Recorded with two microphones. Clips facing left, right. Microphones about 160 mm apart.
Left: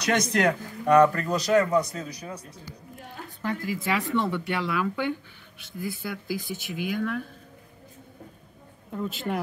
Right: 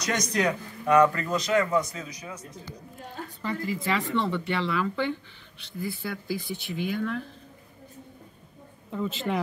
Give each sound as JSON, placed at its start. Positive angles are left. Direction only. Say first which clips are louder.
{"t": 0.0, "sound": "a man's voice", "louder": "left 3 dB", "side_deg": 60}
{"t": 1.1, "sound": "a man's voice", "louder": "left 3 dB", "side_deg": 35}
{"t": 3.4, "sound": "speech", "louder": "left 1 dB", "side_deg": 5}
{"t": 8.9, "sound": "speech", "louder": "right 1 dB", "side_deg": 0}